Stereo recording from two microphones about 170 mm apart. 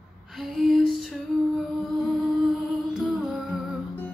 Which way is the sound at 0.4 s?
Centre (ahead or behind).